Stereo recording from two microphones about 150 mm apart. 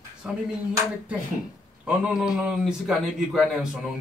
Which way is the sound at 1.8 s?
5° right (ahead or behind).